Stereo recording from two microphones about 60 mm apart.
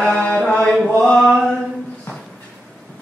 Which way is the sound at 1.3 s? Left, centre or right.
Centre.